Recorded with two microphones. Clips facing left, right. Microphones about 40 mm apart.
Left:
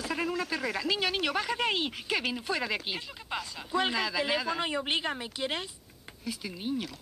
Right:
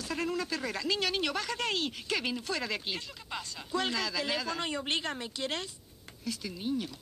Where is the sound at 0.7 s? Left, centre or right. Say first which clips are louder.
Left 2 dB; centre.